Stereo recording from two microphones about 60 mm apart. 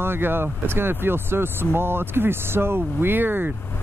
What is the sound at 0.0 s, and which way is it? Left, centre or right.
Speech, right.